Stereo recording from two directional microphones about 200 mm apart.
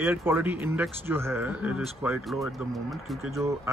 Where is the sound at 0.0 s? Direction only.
10° right (ahead or behind).